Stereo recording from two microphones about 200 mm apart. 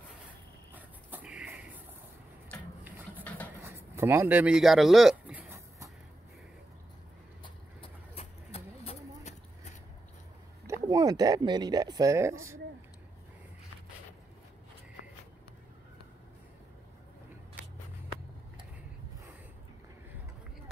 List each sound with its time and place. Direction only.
0.7 s dog: 5° right (ahead or behind)
3.6 s a sound: 15° right (ahead or behind)
7.4 s vehicle: 30° left (ahead or behind)
10.7 s speech: 15° right (ahead or behind)